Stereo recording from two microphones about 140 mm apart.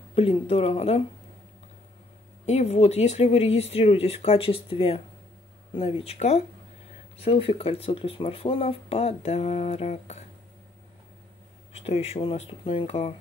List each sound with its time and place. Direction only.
0.1 s speech: 45° left (ahead or behind)
2.4 s speech: 50° left (ahead or behind)
11.7 s speech: 45° left (ahead or behind)